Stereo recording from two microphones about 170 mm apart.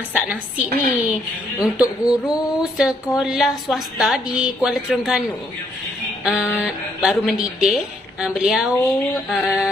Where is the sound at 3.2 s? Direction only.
Centre (ahead or behind).